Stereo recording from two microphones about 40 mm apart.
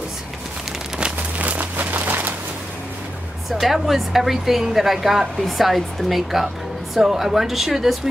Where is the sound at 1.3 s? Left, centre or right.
Right.